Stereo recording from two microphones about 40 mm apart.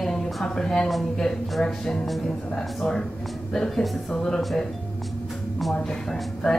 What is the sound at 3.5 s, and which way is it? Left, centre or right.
Speech, centre.